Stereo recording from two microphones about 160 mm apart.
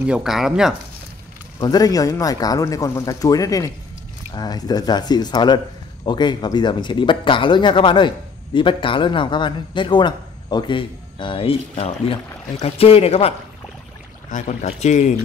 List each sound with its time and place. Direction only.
0.0 s speech: 5° right (ahead or behind)
1.6 s a man's voice: 25° left (ahead or behind); by 13.3 s 40° left (ahead or behind)
14.3 s speech: 50° left (ahead or behind)